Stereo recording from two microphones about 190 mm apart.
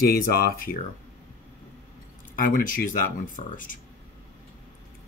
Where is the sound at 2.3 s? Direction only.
45° left (ahead or behind).